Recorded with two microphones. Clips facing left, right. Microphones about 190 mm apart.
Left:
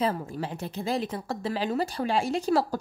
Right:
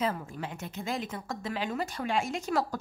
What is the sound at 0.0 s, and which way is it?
A woman's voice, 35° left (ahead or behind).